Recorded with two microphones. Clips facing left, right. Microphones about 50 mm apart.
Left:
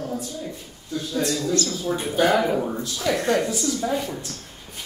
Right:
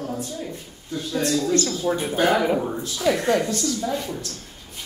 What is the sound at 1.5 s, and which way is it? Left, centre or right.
Speech, right.